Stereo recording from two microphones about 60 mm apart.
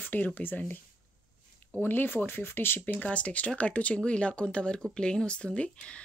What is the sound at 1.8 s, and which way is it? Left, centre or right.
Speech, left.